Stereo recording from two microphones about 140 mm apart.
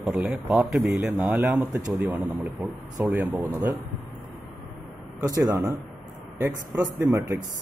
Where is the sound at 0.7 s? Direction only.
20° right (ahead or behind).